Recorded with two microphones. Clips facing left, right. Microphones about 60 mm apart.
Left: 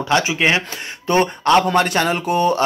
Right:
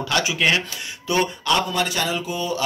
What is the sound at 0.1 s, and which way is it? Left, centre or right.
Speech, left.